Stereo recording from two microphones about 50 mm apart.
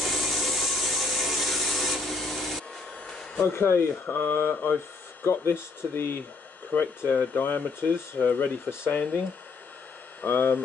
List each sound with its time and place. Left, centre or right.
0.0 s wood: centre
3.3 s speech: left
5.2 s speech: left
6.7 s speech: left
7.1 s speech: left
10.2 s speech: left